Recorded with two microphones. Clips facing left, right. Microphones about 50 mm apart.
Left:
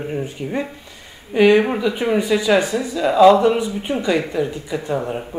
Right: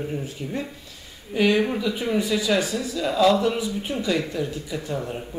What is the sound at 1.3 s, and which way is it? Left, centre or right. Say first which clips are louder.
Speech: left 7 dB; centre.